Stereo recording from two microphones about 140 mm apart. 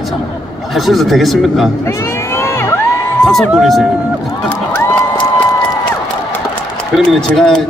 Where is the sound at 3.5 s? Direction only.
Centre (ahead or behind).